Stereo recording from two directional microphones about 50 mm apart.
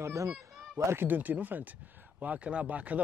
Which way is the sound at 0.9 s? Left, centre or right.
Right.